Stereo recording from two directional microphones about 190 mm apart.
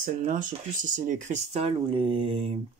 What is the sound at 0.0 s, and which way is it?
Speech, 45° right (ahead or behind).